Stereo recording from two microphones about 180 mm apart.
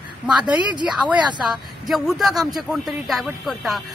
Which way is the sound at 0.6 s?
25° left (ahead or behind).